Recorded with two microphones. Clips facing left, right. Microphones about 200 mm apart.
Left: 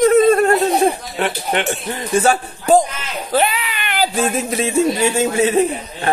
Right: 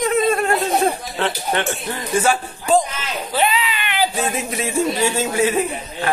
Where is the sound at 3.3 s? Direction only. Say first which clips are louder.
Left 2 dB; 50° left (ahead or behind).